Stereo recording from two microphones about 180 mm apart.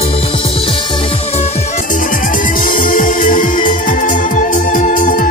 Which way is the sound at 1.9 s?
50° left (ahead or behind).